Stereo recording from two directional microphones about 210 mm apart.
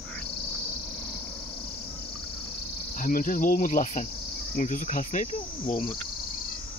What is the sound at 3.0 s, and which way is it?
Cricket, 40° left (ahead or behind).